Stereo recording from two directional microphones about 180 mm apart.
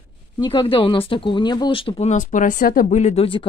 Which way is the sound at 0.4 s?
25° left (ahead or behind).